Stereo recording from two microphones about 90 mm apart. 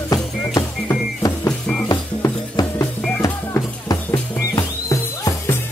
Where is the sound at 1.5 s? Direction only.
10° left (ahead or behind).